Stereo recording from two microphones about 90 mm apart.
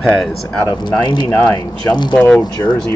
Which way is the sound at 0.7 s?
50° left (ahead or behind).